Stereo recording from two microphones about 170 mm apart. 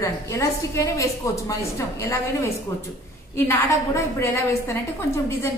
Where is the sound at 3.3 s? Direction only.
15° left (ahead or behind).